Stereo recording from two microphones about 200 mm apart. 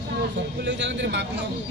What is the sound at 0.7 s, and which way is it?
Speech, 65° right (ahead or behind).